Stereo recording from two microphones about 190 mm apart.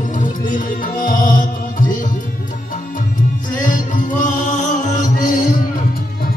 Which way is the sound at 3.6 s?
45° left (ahead or behind).